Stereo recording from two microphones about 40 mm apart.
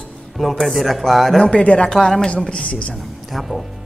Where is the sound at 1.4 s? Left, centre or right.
Left.